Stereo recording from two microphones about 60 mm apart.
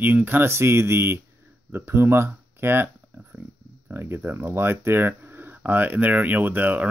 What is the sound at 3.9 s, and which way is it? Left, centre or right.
Speech, right.